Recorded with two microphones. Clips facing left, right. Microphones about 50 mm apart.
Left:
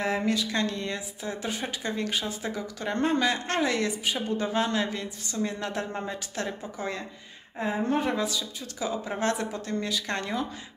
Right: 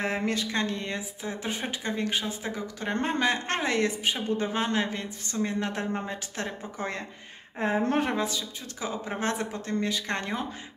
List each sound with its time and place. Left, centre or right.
0.0 s speech: right
0.5 s speech: right
6.8 s speech: right
8.1 s speech: right